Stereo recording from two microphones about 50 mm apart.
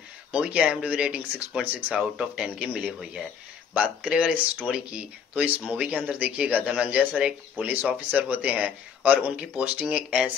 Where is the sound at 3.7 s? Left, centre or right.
Right.